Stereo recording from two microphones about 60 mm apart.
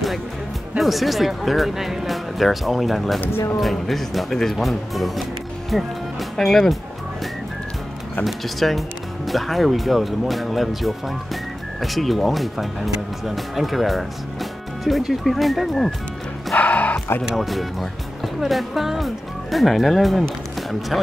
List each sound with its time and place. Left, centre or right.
0.7 s speech: centre
6.3 s speech: centre
8.2 s speech: centre
16.5 s dog: left
17.2 s speech: centre